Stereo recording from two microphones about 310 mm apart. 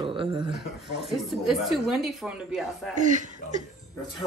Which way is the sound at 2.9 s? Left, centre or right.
Right.